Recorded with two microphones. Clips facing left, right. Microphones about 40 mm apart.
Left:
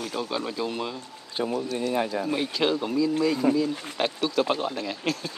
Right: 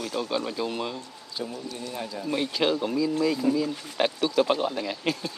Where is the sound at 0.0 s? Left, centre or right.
Centre.